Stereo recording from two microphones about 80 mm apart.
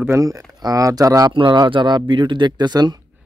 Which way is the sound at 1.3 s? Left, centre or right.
Right.